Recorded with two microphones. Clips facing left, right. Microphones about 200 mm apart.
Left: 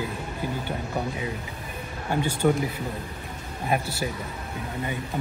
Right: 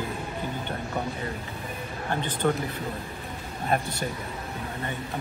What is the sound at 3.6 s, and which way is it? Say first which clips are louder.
Speech: even; 5° left (ahead or behind).